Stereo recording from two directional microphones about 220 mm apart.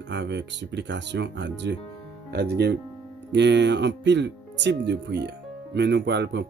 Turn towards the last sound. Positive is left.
turn(degrees=-50)  # may be behind; listen again after turning